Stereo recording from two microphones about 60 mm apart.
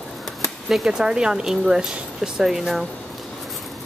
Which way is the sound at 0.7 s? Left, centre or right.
Centre.